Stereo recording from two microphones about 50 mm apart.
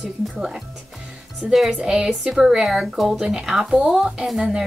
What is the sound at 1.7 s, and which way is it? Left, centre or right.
A woman's voice, centre.